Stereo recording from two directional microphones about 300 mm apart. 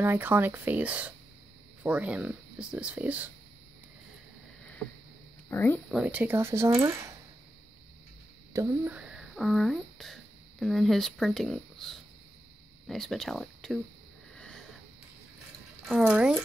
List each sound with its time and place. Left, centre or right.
0.0 s speech: centre
5.5 s speech: centre
8.5 s speech: centre
14.3 s sniff: centre
15.8 s speech: centre